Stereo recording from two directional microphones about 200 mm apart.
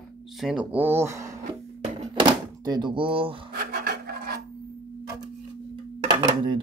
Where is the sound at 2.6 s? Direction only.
20° right (ahead or behind).